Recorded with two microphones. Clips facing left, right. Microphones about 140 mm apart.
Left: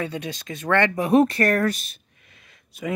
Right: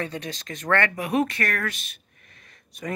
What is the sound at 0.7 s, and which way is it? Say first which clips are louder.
Speech: left 4 dB; 20° left (ahead or behind).